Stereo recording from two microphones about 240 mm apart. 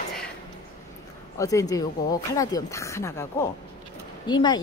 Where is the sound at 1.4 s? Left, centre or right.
Centre.